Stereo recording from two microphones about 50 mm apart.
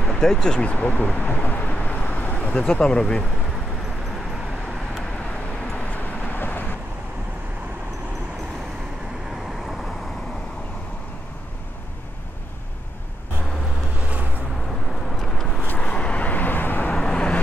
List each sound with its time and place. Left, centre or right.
0.1 s speech: centre
0.7 s vehicle: left
2.5 s speech: centre
5.8 s vehicle: left
6.3 s vehicle: left
15.1 s vehicle: centre
15.8 s vehicle: left
16.9 s vehicle: centre